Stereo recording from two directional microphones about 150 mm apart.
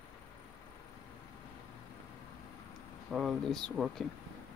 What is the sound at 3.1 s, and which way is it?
Bell, centre (ahead or behind).